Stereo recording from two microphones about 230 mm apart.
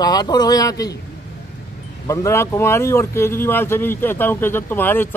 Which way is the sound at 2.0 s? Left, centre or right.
Centre.